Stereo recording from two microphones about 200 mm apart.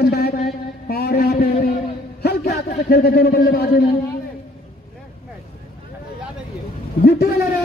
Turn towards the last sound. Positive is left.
turn(degrees=50)  # may be behind; listen again after turning